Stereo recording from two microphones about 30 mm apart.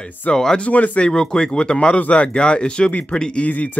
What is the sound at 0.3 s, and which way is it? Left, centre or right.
Speech, left.